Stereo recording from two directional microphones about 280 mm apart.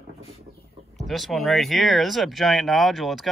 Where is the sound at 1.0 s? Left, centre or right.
Centre.